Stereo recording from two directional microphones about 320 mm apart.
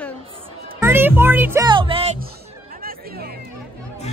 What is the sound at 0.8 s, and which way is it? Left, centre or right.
Speech, centre.